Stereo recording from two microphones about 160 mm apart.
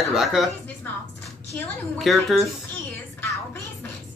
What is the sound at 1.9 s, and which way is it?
Speech, centre (ahead or behind).